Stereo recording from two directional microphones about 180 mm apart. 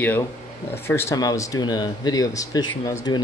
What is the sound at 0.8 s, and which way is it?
Speech, 15° left (ahead or behind).